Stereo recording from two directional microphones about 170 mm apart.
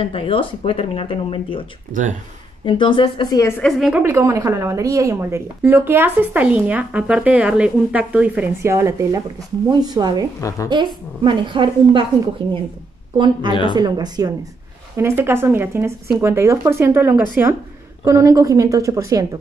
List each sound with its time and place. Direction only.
0.0 s speech: 30° left (ahead or behind)
1.9 s speech: 45° right (ahead or behind)
2.6 s a woman's voice: 30° left (ahead or behind)
3.6 s a woman's voice: centre (ahead or behind)
4.0 s a woman's voice: 15° right (ahead or behind)
13.5 s speech: 30° left (ahead or behind)
13.7 s a woman's voice: 25° right (ahead or behind)